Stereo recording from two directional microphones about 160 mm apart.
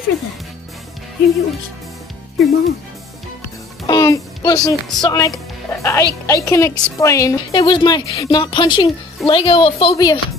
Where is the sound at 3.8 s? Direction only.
20° left (ahead or behind).